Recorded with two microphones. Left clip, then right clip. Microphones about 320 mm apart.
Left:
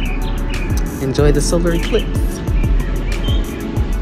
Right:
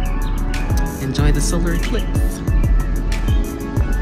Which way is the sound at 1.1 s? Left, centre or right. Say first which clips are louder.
Left 8 dB; centre.